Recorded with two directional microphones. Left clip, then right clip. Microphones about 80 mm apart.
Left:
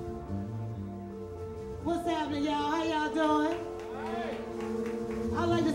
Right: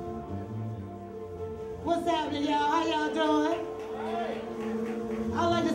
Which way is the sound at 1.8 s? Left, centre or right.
Left.